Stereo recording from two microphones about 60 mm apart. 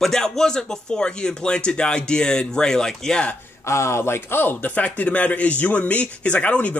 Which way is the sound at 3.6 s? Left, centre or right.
Left.